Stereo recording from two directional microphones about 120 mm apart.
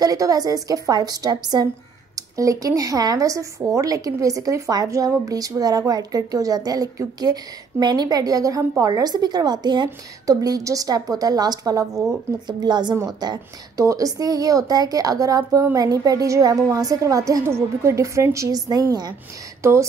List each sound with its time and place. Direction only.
0.0 s a woman's voice: 30° right (ahead or behind)
19.6 s speech: 20° right (ahead or behind)